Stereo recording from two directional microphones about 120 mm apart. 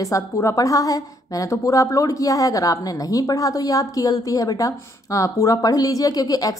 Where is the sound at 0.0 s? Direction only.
25° left (ahead or behind).